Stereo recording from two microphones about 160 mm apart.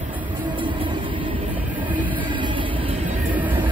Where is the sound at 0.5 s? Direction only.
30° right (ahead or behind).